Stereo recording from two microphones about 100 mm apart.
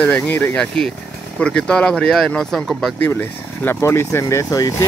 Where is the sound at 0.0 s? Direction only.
15° left (ahead or behind).